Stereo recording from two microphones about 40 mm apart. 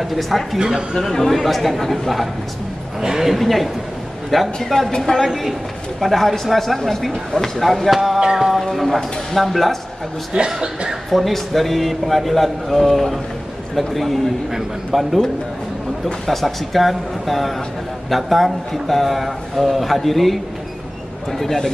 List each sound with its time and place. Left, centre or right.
0.0 s a man's voice: centre
3.0 s speech: centre
3.3 s a man's voice: centre
8.4 s music: centre
8.7 s a man's voice: centre
10.3 s speech: right
11.1 s a man's voice: centre
16.3 s a man's voice: centre